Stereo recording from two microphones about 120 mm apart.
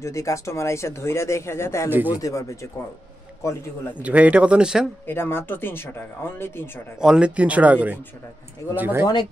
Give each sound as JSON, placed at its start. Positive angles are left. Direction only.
{"t": 0.0, "sound": "speech", "side_deg": 25}
{"t": 1.9, "sound": "speech", "side_deg": -15}
{"t": 2.1, "sound": "speech", "side_deg": 30}
{"t": 4.0, "sound": "speech", "side_deg": -10}
{"t": 5.0, "sound": "speech", "side_deg": 20}
{"t": 7.0, "sound": "speech", "side_deg": -5}